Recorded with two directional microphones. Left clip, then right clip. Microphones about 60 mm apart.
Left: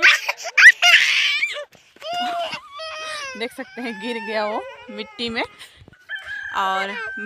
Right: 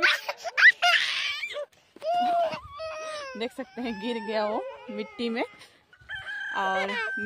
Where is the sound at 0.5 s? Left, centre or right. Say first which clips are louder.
Left 8 dB; right.